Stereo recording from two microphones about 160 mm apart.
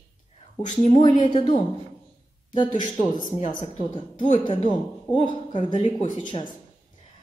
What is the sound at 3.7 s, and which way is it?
A woman's voice, 35° left (ahead or behind).